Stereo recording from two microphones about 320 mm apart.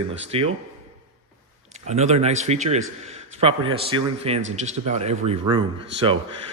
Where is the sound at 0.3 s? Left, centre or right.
Centre.